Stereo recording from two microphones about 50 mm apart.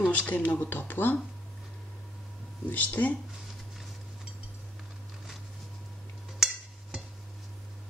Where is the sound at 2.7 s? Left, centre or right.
Left.